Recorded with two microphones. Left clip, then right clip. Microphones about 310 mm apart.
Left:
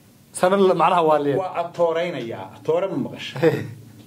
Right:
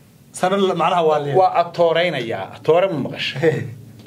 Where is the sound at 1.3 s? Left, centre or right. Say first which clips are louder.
Right 7 dB; right.